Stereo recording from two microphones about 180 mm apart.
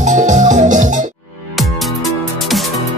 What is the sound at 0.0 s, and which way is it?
Music, 45° right (ahead or behind).